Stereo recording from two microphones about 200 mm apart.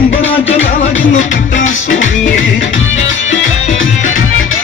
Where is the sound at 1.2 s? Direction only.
40° left (ahead or behind).